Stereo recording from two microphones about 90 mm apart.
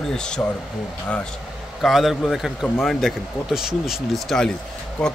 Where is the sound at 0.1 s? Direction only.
10° left (ahead or behind).